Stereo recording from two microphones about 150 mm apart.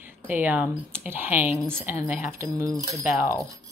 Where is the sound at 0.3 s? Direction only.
10° right (ahead or behind).